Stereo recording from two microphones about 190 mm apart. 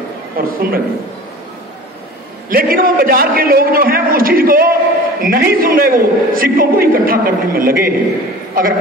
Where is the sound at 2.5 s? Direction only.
50° right (ahead or behind).